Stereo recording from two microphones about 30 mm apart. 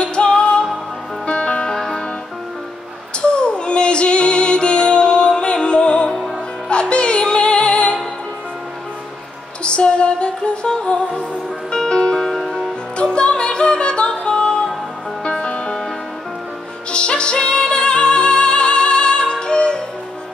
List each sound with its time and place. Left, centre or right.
0.0 s music: left
1.7 s music: centre
3.2 s music: left
9.6 s music: left
16.9 s music: left